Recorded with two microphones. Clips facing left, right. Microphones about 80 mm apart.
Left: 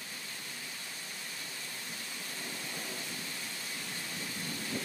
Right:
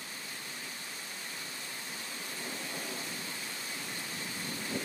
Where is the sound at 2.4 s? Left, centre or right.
Right.